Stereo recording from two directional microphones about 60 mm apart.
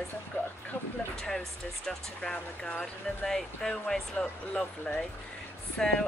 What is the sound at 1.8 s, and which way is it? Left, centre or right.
Speech, centre.